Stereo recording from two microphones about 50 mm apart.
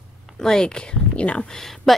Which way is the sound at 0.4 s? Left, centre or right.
Centre.